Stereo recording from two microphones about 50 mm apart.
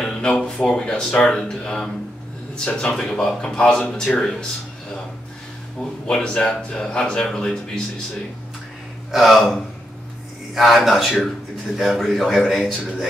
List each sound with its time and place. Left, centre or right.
0.0 s a sound: centre
0.6 s speech: centre
3.0 s speech: centre
5.8 s speech: centre
9.1 s speech: centre